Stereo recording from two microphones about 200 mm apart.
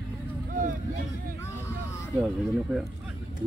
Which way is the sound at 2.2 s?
Centre (ahead or behind).